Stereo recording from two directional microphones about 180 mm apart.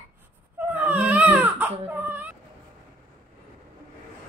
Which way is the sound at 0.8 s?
10° right (ahead or behind).